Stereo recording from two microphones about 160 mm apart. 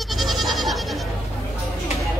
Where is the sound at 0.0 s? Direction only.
Centre (ahead or behind).